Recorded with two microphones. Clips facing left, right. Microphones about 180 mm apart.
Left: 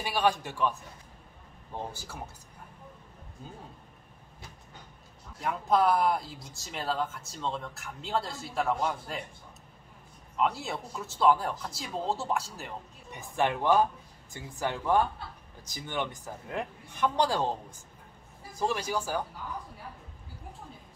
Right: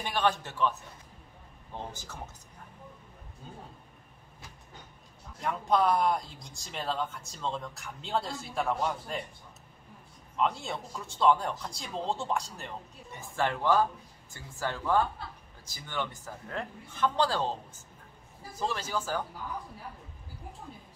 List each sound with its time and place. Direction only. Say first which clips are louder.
0.0 s a man's voice: left 1 dB; 10° left (ahead or behind)
1.9 s a man's voice: left 1 dB; 10° left (ahead or behind)
5.4 s speech: left 1 dB; 5° left (ahead or behind)
10.3 s speech: left 1 dB; 5° left (ahead or behind)
13.1 s a man's voice: left 2 dB; 15° left (ahead or behind)